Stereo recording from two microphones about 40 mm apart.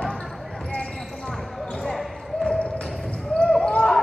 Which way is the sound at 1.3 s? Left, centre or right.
Centre.